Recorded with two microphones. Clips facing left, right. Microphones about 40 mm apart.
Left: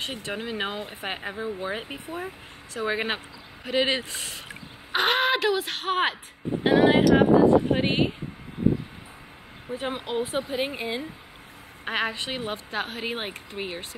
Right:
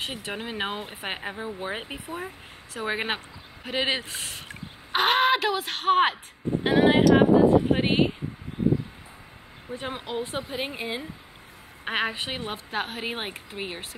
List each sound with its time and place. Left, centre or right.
0.0 s a woman's voice: centre
3.6 s a sound: centre
6.6 s a woman's voice: centre
9.7 s a woman's voice: centre